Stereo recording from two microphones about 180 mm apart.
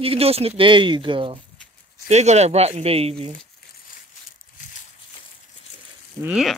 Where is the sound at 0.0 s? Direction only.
30° right (ahead or behind).